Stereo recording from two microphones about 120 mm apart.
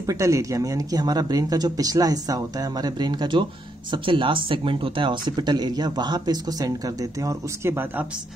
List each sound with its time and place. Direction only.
0.0 s speech: 30° right (ahead or behind)
7.7 s speech: 15° right (ahead or behind)